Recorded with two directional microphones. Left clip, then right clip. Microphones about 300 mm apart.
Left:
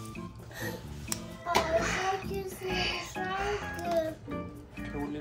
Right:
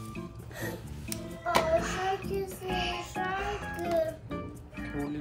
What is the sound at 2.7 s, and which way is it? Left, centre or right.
Music, left.